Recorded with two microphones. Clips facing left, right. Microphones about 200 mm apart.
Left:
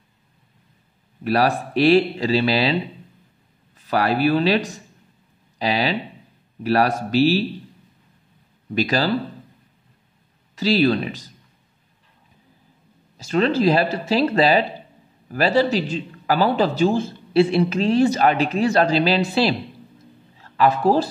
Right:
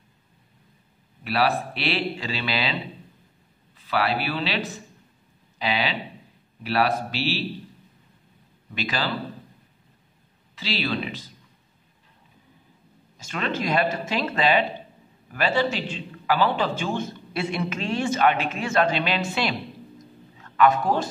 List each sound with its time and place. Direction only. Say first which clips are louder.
1.2 s a man's voice: left 4 dB; 45° left (ahead or behind)
8.7 s a man's voice: left 8 dB; 40° left (ahead or behind)
10.5 s a man's voice: left 10 dB; 45° left (ahead or behind)
13.2 s a man's voice: left 10 dB; 35° left (ahead or behind)